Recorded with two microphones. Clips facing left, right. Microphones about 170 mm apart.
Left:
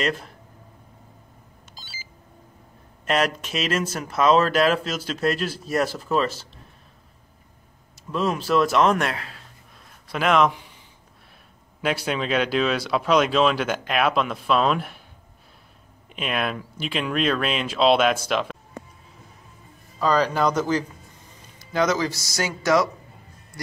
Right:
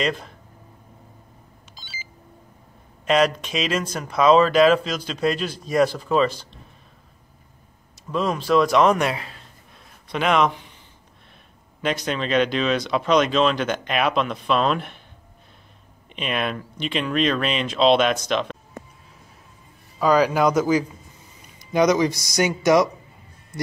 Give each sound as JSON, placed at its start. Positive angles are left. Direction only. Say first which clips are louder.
{"t": 0.0, "sound": "speech", "louder": "right 1 dB", "side_deg": 5}
{"t": 3.1, "sound": "speech", "louder": "right 4 dB", "side_deg": 5}
{"t": 8.1, "sound": "speech", "louder": "right 2 dB", "side_deg": 5}
{"t": 11.8, "sound": "speech", "louder": "even", "side_deg": 5}
{"t": 16.2, "sound": "speech", "louder": "right 1 dB", "side_deg": 0}
{"t": 20.0, "sound": "speech", "louder": "right 3 dB", "side_deg": -10}